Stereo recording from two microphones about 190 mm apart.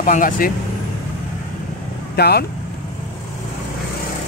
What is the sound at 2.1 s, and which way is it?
Speech, 60° left (ahead or behind).